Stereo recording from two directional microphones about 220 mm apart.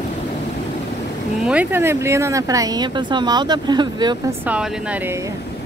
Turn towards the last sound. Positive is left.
turn(degrees=-20)  # may be behind; listen again after turning